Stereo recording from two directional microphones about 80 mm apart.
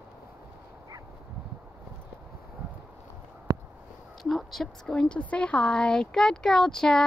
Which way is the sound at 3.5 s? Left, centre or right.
Right.